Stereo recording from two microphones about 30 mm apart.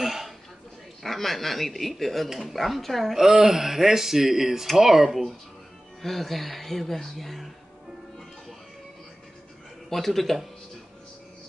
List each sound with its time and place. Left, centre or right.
0.0 s a sound: centre
1.0 s speech: centre
3.2 s speech: centre
6.0 s speech: centre
9.8 s a man's voice: centre